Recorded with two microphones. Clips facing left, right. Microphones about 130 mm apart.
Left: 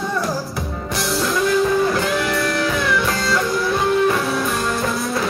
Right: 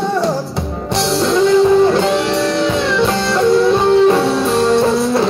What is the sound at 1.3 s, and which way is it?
Music, 25° right (ahead or behind).